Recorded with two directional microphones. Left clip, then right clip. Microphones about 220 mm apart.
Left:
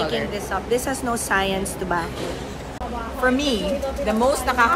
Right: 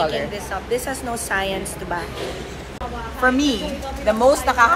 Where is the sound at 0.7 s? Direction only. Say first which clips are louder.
Left 1 dB; 25° left (ahead or behind).